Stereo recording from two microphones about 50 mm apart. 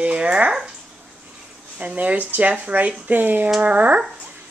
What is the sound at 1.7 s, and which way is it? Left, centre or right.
Speech, right.